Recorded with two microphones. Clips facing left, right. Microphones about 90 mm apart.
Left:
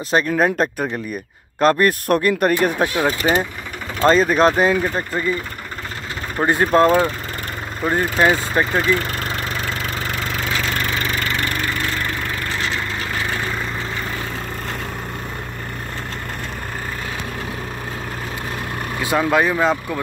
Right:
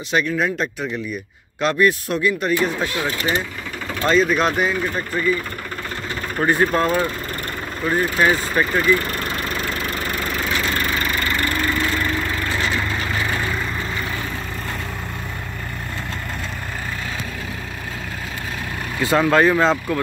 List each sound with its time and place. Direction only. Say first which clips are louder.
0.1 s speech: left 3 dB; 40° left (ahead or behind); by 3.1 s 60° left (ahead or behind)
4.0 s speech: left 3 dB; 40° left (ahead or behind)
6.3 s speech: even; 25° left (ahead or behind)
6.7 s speech: left 5 dB; 35° left (ahead or behind)
19.0 s speech: right 2 dB; 10° left (ahead or behind)